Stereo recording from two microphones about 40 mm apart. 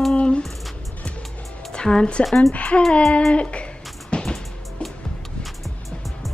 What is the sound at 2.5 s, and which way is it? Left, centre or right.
Child singing, left.